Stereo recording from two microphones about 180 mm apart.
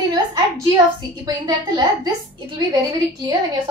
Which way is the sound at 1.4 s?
20° right (ahead or behind).